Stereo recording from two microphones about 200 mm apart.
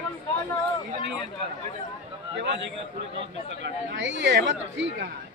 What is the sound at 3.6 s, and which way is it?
Speech, 65° right (ahead or behind).